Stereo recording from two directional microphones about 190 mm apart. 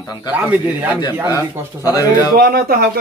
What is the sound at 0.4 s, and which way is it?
Speech, 10° right (ahead or behind).